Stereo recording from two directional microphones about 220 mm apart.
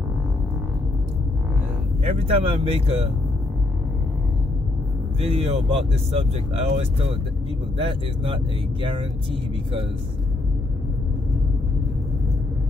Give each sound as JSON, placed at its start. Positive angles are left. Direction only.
{"t": 2.0, "sound": "speech", "side_deg": -25}
{"t": 5.2, "sound": "speech", "side_deg": -25}